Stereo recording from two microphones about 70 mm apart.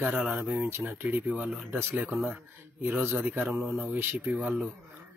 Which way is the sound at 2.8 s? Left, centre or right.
Right.